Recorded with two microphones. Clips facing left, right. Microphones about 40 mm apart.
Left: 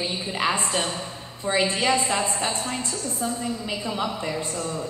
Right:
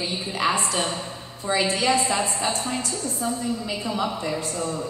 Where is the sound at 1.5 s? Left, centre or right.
Left.